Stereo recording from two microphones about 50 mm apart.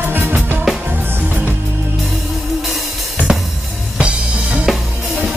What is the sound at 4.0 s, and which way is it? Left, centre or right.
Music, right.